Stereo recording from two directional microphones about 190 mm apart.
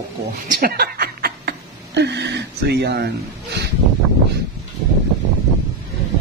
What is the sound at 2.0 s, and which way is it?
Speech, 65° right (ahead or behind).